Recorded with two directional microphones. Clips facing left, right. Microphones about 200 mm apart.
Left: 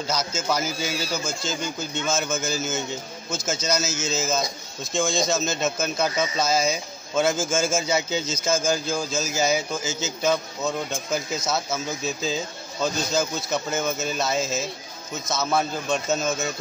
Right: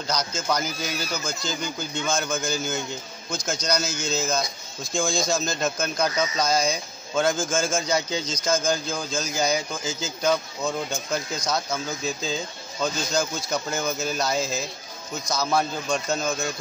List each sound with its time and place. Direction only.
0.1 s speech: 5° left (ahead or behind)
0.9 s speech: 30° left (ahead or behind)
1.2 s speech: 5° left (ahead or behind)